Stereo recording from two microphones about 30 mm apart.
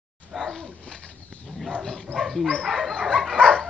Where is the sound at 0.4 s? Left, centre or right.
Centre.